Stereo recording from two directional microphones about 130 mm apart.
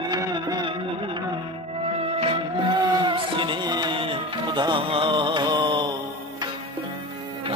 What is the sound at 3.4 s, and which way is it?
Music, 35° right (ahead or behind).